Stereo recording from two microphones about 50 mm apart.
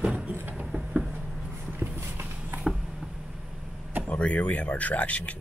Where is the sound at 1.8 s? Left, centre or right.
Right.